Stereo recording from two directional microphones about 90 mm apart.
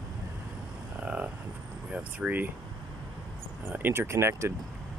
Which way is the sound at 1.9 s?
15° right (ahead or behind).